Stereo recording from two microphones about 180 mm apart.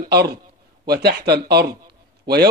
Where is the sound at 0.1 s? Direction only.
65° right (ahead or behind).